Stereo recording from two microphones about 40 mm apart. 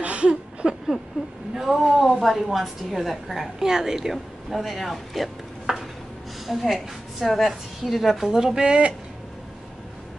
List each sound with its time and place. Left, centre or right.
0.0 s a sound: right
1.5 s a sound: centre
2.2 s a woman's voice: centre
3.5 s a woman's voice: centre
8.3 s speech: centre
8.6 s speech: right